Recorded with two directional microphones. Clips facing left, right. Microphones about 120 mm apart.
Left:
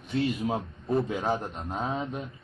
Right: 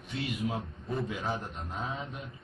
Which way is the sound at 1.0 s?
40° left (ahead or behind).